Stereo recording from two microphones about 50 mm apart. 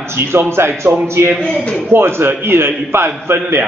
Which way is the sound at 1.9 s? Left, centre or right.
Right.